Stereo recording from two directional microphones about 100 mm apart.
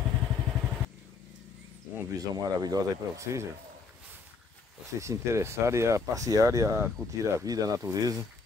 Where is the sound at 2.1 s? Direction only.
40° right (ahead or behind).